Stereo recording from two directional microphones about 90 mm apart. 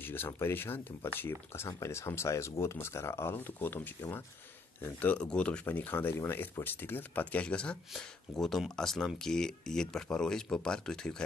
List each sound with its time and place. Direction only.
0.0 s speech: 25° left (ahead or behind)
5.7 s speech: 20° left (ahead or behind)